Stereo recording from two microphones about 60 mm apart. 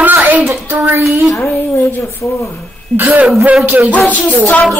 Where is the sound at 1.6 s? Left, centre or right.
Left.